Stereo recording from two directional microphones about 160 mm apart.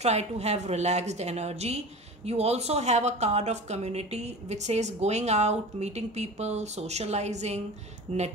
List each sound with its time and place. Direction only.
0.0 s speech: 40° right (ahead or behind)